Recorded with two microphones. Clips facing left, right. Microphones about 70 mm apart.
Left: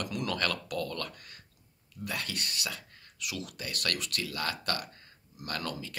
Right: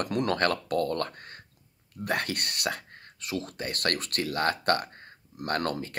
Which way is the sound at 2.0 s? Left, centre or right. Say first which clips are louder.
Right 7 dB; right.